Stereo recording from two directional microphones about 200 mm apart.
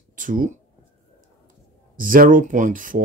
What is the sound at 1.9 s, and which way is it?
Speech, 45° right (ahead or behind).